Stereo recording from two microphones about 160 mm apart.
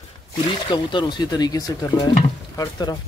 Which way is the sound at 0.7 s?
30° left (ahead or behind).